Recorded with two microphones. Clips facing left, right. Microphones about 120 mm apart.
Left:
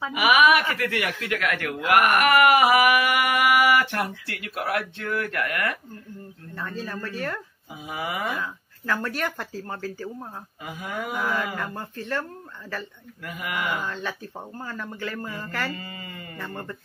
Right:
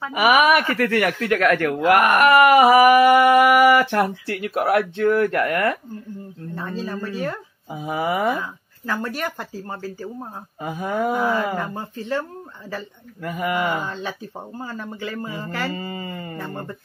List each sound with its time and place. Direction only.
0.1 s speech: 40° right (ahead or behind)
6.5 s speech: 20° right (ahead or behind)
7.7 s speech: 35° right (ahead or behind)
8.4 s speech: 10° right (ahead or behind)
10.6 s speech: 35° right (ahead or behind)
11.6 s speech: 10° right (ahead or behind)
13.2 s speech: 30° right (ahead or behind)
15.7 s speech: 30° right (ahead or behind)